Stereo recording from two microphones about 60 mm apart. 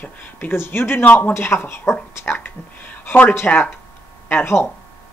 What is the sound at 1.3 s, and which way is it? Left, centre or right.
Speech, left.